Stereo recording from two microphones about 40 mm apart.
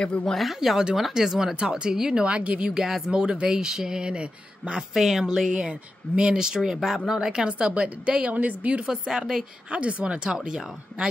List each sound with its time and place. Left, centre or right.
0.0 s speech: left
0.3 s speech: centre
0.6 s speech: centre
2.2 s speech: right
2.7 s speech: centre
4.9 s speech: centre
7.4 s speech: right
8.3 s a woman's voice: right
8.8 s speech: centre
9.7 s speech: right